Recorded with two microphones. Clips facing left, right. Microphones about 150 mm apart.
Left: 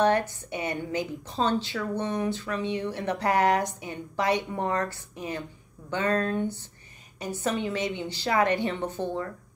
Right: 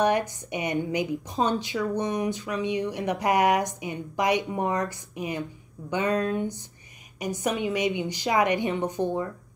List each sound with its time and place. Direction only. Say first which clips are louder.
0.0 s a woman's voice: even; 15° right (ahead or behind)